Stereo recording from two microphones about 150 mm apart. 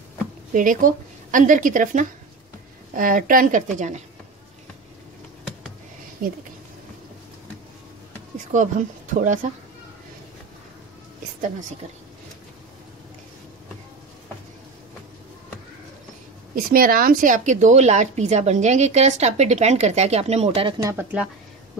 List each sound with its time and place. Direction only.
0.5 s a woman's voice: 60° right (ahead or behind)
3.7 s a woman's voice: 55° right (ahead or behind)
6.2 s speech: 70° right (ahead or behind)
8.5 s a woman's voice: 55° right (ahead or behind)
16.5 s a woman's voice: 75° right (ahead or behind); by 20.7 s 40° right (ahead or behind)
20.8 s speech: 10° right (ahead or behind)